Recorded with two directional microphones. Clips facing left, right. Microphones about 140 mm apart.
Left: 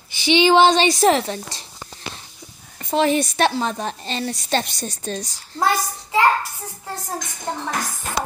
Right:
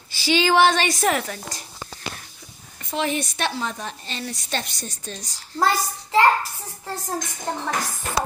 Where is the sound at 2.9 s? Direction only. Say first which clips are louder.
Left 7 dB; 35° left (ahead or behind).